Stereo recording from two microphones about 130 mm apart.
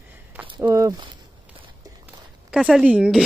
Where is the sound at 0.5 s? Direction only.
25° right (ahead or behind).